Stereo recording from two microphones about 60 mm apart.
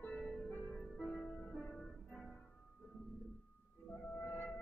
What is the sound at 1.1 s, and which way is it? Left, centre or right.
Music, centre.